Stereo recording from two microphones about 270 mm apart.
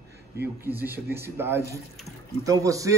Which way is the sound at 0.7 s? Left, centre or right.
Centre.